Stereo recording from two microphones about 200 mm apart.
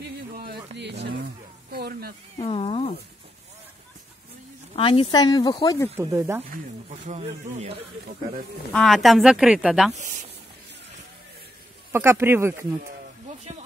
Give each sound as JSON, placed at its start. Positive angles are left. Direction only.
{"t": 0.0, "sound": "a sound", "side_deg": -55}
{"t": 0.7, "sound": "speech", "side_deg": -60}
{"t": 2.3, "sound": "speech", "side_deg": 25}
{"t": 4.7, "sound": "speech", "side_deg": 30}
{"t": 5.9, "sound": "speech", "side_deg": -10}
{"t": 6.9, "sound": "a man's voice", "side_deg": -30}
{"t": 8.7, "sound": "speech", "side_deg": 0}
{"t": 9.9, "sound": "speech", "side_deg": -40}
{"t": 11.9, "sound": "speech", "side_deg": -10}